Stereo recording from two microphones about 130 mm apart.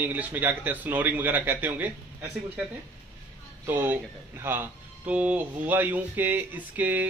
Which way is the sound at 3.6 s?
15° right (ahead or behind).